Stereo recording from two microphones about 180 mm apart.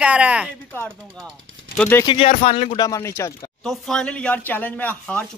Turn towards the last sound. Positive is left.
turn(degrees=10)  # may be behind; listen again after turning